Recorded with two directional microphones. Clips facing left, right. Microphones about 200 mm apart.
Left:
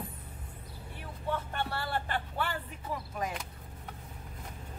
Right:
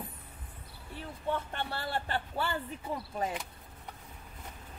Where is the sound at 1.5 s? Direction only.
25° right (ahead or behind).